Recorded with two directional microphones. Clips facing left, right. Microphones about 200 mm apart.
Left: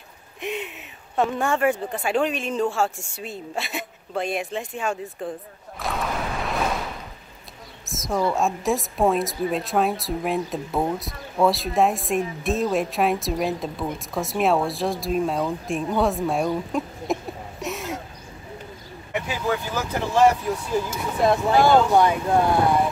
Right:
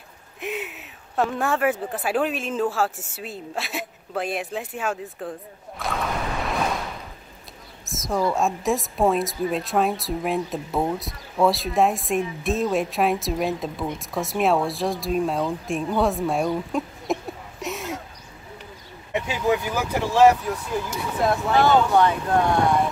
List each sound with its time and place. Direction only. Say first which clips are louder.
0.4 s a woman's voice: left 1 dB; 5° right (ahead or behind)
5.8 s a sound: even; centre (ahead or behind)
7.8 s a woman's voice: even; centre (ahead or behind)
19.2 s speech: right 4 dB; 15° right (ahead or behind)
21.5 s speech: even; 10° left (ahead or behind)